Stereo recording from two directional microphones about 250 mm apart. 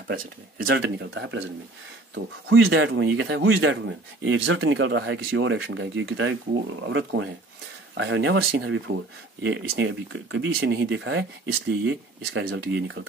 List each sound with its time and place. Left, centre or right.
0.7 s speech: right